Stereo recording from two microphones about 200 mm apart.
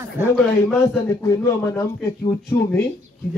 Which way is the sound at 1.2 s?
15° left (ahead or behind).